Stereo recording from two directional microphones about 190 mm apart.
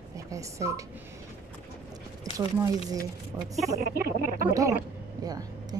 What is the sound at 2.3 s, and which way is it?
A woman's voice, 20° right (ahead or behind).